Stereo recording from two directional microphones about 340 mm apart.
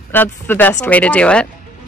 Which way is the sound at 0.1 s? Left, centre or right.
Centre.